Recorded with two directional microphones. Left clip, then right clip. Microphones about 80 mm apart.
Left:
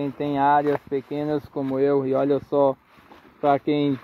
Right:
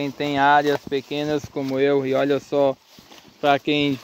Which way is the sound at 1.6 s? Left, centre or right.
Centre.